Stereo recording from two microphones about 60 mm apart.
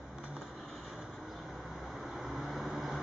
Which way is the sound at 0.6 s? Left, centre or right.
Centre.